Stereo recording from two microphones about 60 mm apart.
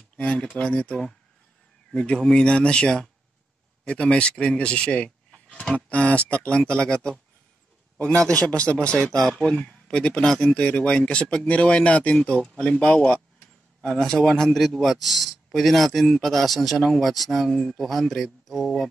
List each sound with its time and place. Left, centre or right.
0.2 s speech: centre
12.2 s speech: centre
13.8 s speech: centre